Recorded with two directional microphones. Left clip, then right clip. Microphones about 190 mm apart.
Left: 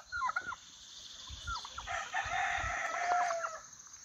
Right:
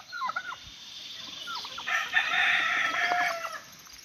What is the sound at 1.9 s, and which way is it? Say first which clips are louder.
Chicken: right 10 dB; 25° left (ahead or behind).